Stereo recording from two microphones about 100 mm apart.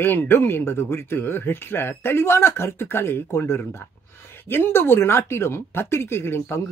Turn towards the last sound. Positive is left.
turn(degrees=25)  # may be behind; listen again after turning